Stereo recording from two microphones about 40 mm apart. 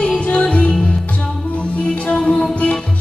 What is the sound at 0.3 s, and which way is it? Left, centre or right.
Music, left.